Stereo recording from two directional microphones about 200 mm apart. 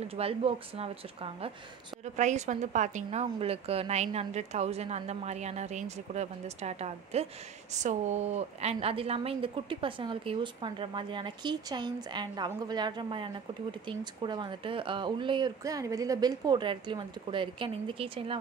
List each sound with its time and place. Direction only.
0.0 s a woman's voice: 30° right (ahead or behind)